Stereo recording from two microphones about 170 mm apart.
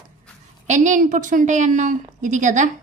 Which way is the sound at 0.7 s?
45° right (ahead or behind).